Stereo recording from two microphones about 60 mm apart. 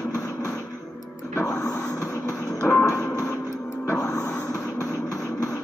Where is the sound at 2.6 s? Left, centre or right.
Centre.